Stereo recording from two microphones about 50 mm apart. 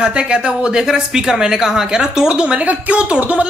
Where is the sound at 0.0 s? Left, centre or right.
Centre.